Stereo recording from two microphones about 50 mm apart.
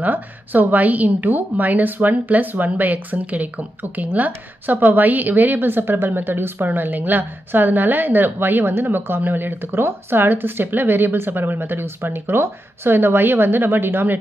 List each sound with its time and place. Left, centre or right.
0.0 s a woman's voice: right